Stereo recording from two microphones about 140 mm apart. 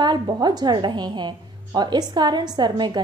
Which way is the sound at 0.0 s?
30° right (ahead or behind).